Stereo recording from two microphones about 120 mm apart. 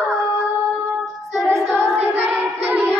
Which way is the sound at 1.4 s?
20° right (ahead or behind).